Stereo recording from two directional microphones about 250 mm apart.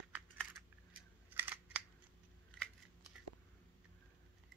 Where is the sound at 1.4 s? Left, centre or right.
Centre.